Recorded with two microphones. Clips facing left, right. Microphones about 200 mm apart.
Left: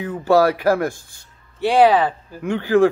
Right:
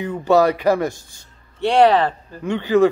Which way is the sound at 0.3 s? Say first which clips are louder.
Even; 5° left (ahead or behind).